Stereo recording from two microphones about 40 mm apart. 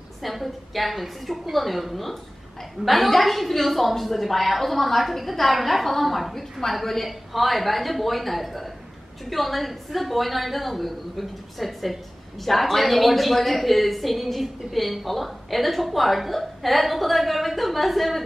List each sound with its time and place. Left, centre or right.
0.2 s a woman's voice: centre